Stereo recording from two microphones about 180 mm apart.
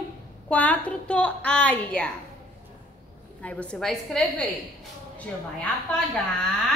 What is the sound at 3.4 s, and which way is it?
Speech, 5° left (ahead or behind).